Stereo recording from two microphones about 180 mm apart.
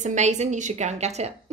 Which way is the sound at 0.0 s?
40° right (ahead or behind).